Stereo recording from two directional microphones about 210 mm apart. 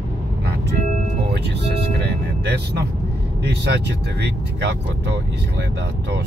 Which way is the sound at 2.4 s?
55° right (ahead or behind).